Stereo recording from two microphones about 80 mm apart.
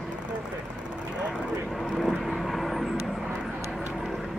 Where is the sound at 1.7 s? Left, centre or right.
Centre.